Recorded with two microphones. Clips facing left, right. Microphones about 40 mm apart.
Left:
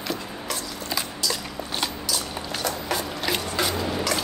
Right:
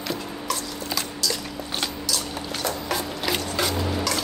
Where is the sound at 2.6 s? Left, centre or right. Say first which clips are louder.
Even; centre.